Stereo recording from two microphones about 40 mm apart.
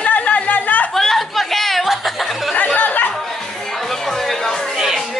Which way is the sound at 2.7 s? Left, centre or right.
Left.